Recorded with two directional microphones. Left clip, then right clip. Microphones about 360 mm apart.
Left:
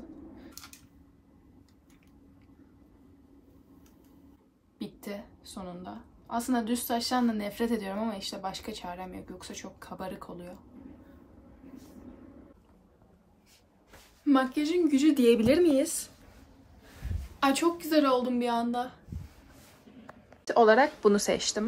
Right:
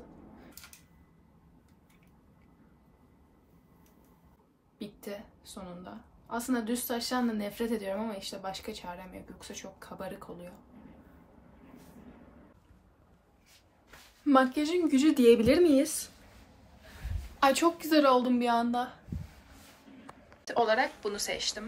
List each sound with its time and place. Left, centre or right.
4.7 s a woman's voice: centre
14.2 s a woman's voice: centre
17.4 s a woman's voice: centre
20.4 s speech: left